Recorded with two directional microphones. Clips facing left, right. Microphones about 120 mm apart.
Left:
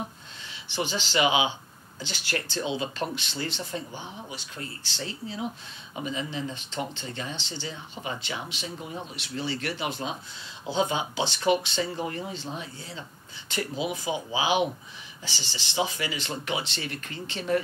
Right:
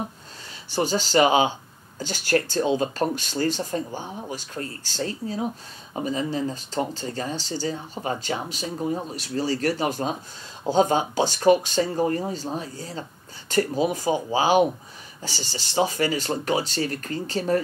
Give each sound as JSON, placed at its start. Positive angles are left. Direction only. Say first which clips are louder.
{"t": 0.7, "sound": "speech", "louder": "right 7 dB", "side_deg": -40}